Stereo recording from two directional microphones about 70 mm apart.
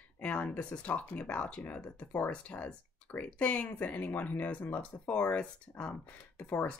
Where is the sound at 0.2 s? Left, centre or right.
Centre.